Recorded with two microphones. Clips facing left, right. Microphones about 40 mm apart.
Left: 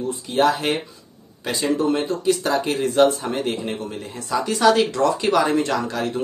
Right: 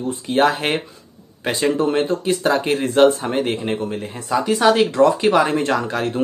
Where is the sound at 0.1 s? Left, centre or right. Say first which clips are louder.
Right 2 dB; right.